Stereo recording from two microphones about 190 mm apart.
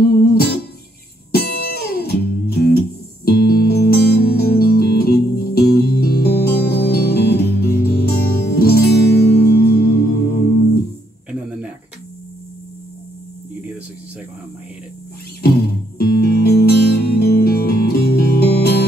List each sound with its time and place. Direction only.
0.0 s music: 55° left (ahead or behind)
16.0 s music: 55° left (ahead or behind)